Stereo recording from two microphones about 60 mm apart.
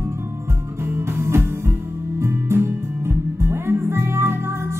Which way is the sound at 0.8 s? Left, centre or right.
Right.